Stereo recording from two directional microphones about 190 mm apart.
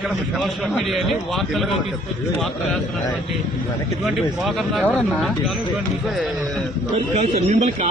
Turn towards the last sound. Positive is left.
turn(degrees=-30)  # may be behind; listen again after turning